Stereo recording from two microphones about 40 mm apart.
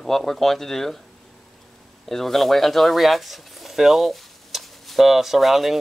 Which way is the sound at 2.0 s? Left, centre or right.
Centre.